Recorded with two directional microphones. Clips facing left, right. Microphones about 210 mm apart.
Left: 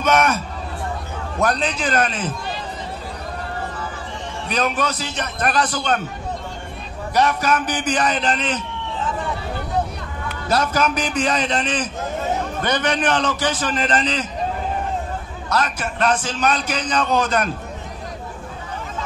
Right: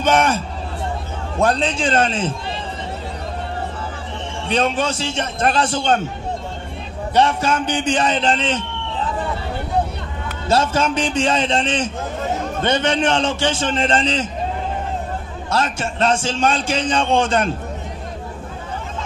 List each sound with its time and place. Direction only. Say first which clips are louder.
0.0 s a man's voice: right 1 dB; 30° right (ahead or behind)
1.4 s a man's voice: right 3 dB; 25° right (ahead or behind)
4.5 s a man's voice: right 3 dB; 30° right (ahead or behind)
7.2 s a man's voice: right 2 dB; 25° right (ahead or behind)
10.5 s a man's voice: right 2 dB; 25° right (ahead or behind)
15.5 s a man's voice: right 1 dB; 25° right (ahead or behind)